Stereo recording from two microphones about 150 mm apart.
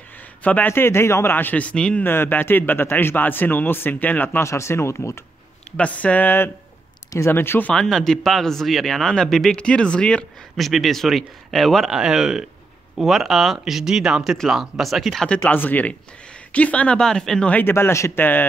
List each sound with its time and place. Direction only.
0.4 s a man's voice: 10° left (ahead or behind)